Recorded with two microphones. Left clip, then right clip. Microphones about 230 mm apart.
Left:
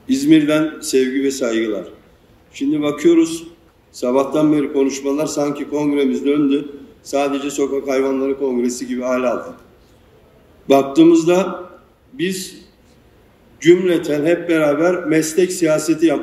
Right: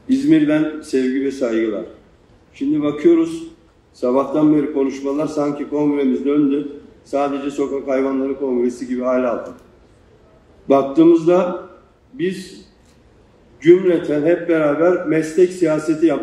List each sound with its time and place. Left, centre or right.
0.1 s a man's voice: left
10.7 s a man's voice: left
13.6 s a man's voice: left